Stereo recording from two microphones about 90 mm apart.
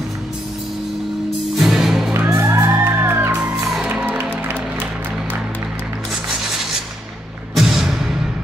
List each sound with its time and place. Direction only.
1.6 s music: 5° right (ahead or behind)
2.2 s music: 35° right (ahead or behind)
3.4 s music: 5° right (ahead or behind)
4.2 s music: 25° right (ahead or behind)
7.5 s music: 5° right (ahead or behind)